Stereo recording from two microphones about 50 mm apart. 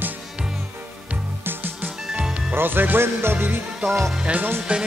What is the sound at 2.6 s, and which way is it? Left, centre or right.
Music, right.